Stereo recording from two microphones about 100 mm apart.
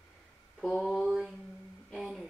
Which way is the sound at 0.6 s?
Centre (ahead or behind).